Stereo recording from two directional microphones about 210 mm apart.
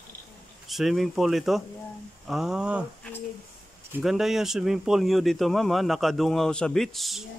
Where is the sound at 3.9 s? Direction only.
Centre (ahead or behind).